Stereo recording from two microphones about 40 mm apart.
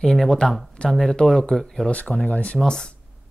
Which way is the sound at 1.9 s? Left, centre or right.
Left.